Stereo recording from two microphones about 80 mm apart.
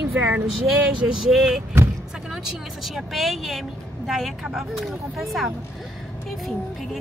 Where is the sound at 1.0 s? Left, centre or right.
Centre.